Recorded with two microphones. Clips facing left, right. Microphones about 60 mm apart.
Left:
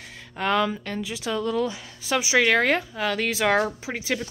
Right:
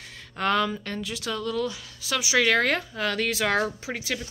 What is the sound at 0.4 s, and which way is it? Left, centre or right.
Speech, centre.